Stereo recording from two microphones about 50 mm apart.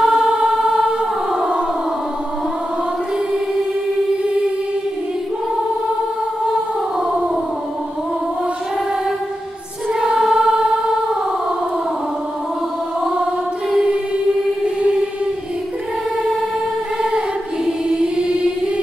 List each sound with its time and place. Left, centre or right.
0.0 s music: centre
0.6 s choir: centre
9.9 s choir: centre
14.8 s choir: right
17.6 s music: centre